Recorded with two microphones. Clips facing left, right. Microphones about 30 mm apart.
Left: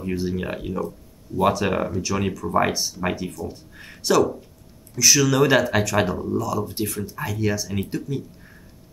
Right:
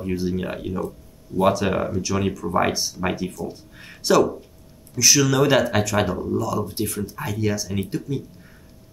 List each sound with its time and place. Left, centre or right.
0.0 s speech: centre